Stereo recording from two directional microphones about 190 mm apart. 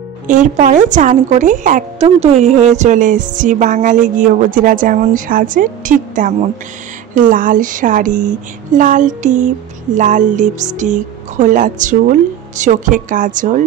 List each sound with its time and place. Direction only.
0.3 s a woman's voice: 40° right (ahead or behind)